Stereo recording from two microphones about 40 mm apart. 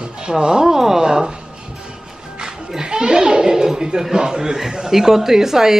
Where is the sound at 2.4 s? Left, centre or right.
Centre.